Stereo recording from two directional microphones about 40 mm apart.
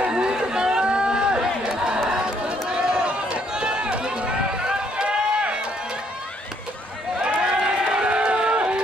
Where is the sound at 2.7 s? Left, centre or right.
Right.